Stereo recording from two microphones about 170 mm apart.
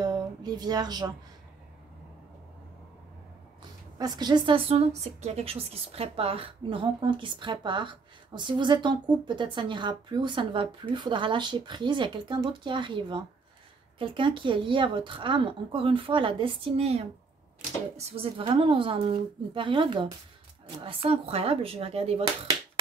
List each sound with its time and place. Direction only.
0.0 s speech: 25° right (ahead or behind)
4.0 s a woman's voice: 25° right (ahead or behind)